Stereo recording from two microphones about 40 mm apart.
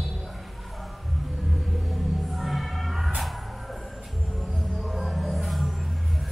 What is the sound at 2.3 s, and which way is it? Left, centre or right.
Music, centre.